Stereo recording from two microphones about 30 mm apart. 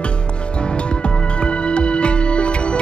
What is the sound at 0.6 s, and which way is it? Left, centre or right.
Music, left.